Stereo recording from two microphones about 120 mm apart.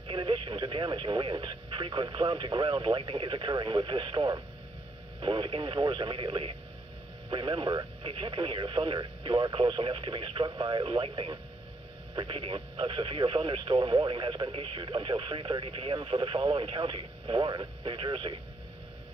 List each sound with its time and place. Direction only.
0.1 s speech: 45° right (ahead or behind)